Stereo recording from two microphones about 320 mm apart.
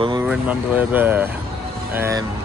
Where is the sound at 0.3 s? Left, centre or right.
Centre.